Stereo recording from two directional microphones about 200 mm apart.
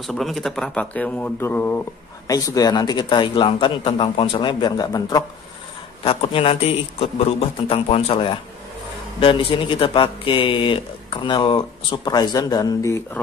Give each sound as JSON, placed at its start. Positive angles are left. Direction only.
{"t": 0.0, "sound": "speech", "side_deg": 0}